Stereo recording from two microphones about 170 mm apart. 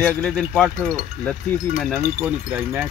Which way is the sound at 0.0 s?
10° left (ahead or behind).